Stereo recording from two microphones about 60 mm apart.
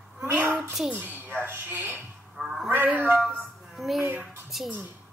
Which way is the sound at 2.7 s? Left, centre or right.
Right.